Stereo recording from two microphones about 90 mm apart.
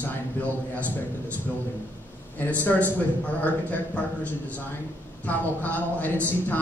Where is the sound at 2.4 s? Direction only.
20° left (ahead or behind).